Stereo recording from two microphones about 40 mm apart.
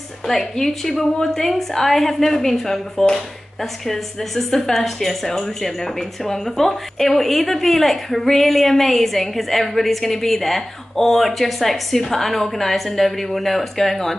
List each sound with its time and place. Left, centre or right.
0.3 s a woman's voice: centre